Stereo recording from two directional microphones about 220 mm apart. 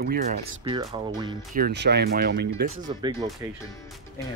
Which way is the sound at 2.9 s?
20° right (ahead or behind).